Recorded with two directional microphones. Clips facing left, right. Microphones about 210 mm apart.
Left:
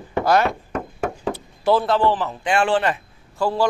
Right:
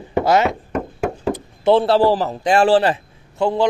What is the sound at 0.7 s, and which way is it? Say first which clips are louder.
Knock: right 3 dB; 10° right (ahead or behind).